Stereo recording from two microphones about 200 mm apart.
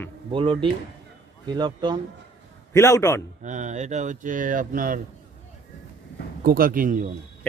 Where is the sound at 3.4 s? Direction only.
35° right (ahead or behind).